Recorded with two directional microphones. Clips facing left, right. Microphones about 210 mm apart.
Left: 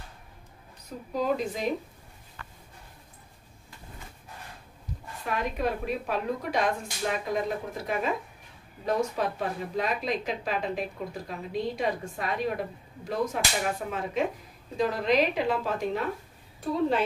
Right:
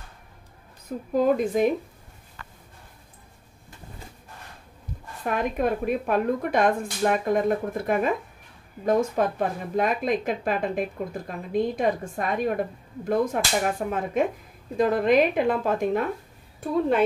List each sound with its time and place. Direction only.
1.1 s speech: 50° right (ahead or behind)
5.2 s speech: 50° right (ahead or behind)